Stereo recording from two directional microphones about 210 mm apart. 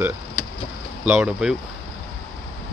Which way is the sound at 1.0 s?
5° right (ahead or behind).